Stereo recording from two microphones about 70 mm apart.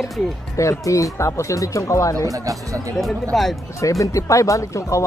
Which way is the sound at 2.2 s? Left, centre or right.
Right.